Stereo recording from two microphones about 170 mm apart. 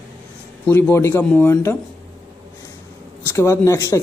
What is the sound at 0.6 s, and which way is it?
Speech, 15° left (ahead or behind).